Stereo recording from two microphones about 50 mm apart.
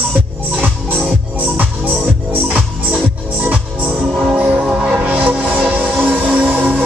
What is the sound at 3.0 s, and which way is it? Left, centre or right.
Music, right.